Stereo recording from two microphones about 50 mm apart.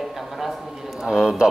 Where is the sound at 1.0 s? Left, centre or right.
Centre.